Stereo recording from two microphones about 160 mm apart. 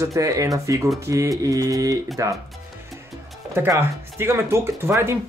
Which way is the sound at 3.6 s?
15° right (ahead or behind).